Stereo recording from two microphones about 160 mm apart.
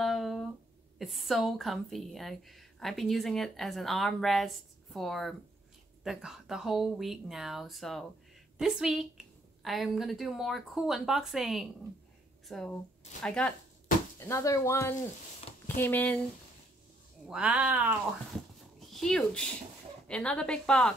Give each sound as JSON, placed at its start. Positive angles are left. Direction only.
{"t": 0.0, "sound": "a sound", "side_deg": 0}
{"t": 0.9, "sound": "a woman's voice", "side_deg": 0}
{"t": 14.2, "sound": "speech", "side_deg": 20}
{"t": 17.3, "sound": "speech", "side_deg": -5}
{"t": 18.9, "sound": "a woman's voice", "side_deg": 5}